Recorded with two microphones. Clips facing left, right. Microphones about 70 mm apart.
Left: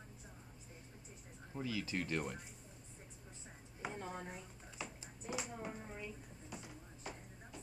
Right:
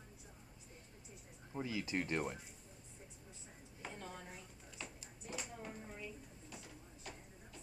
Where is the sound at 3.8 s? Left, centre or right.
Centre.